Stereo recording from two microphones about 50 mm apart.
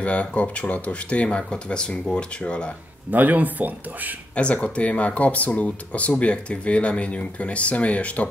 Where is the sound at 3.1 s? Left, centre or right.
Right.